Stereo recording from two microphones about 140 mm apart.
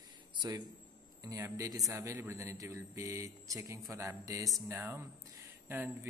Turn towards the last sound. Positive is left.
turn(degrees=-15)  # may be behind; listen again after turning